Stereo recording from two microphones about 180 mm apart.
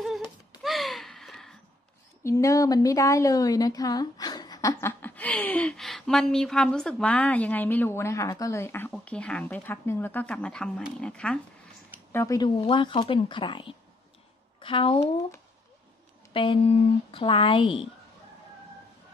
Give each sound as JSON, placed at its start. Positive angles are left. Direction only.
{"t": 0.6, "sound": "a sound", "side_deg": 0}
{"t": 2.2, "sound": "a woman's voice", "side_deg": 15}
{"t": 12.1, "sound": "speech", "side_deg": 15}
{"t": 12.5, "sound": "speech", "side_deg": 30}
{"t": 16.3, "sound": "speech", "side_deg": 30}